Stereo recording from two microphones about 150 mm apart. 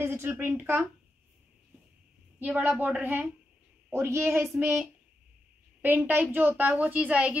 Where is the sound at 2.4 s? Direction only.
10° right (ahead or behind).